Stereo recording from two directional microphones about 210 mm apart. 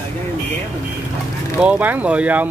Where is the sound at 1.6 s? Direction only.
5° right (ahead or behind).